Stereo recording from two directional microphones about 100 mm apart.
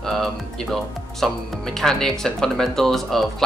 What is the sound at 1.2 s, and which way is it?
Speech, 5° left (ahead or behind).